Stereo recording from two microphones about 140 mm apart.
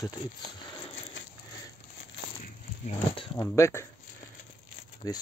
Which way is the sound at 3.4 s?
20° left (ahead or behind).